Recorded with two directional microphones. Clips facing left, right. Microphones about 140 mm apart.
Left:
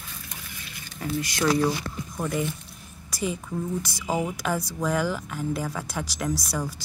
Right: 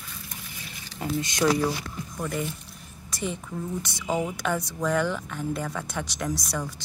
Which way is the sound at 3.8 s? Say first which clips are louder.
Even; 5° left (ahead or behind).